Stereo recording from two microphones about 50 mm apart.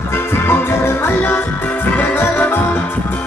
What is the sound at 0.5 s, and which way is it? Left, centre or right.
Music, left.